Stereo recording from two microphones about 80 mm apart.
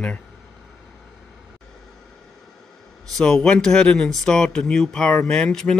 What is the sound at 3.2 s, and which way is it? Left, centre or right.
Speech, centre.